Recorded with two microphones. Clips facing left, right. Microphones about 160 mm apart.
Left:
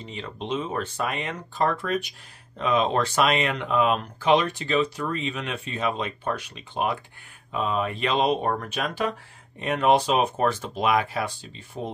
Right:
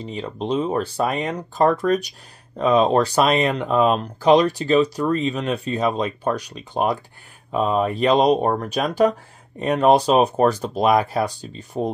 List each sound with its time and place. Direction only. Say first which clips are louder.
0.0 s speech: right 7 dB; 35° right (ahead or behind)